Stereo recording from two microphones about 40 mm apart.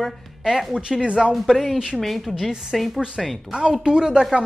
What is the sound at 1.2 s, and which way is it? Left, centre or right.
A woman's voice, centre.